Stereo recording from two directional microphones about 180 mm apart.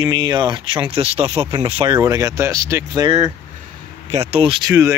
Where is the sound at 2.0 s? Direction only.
20° right (ahead or behind).